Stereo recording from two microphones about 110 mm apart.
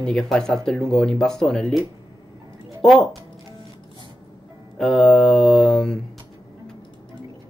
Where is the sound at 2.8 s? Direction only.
Centre (ahead or behind).